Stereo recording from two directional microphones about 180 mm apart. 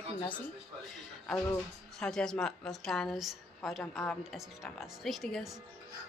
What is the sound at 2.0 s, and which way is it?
A woman's voice, 5° left (ahead or behind).